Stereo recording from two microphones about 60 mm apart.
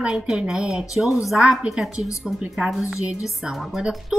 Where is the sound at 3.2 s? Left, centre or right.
Centre.